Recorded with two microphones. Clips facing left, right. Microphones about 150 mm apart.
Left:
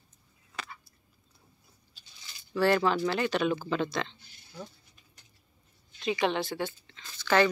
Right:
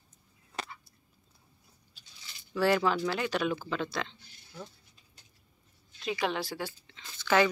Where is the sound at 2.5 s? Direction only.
10° right (ahead or behind).